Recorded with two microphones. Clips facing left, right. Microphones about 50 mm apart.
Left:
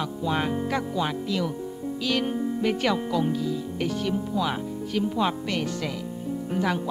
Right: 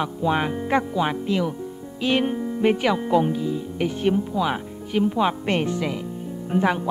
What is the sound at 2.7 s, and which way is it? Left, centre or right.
Speech, centre.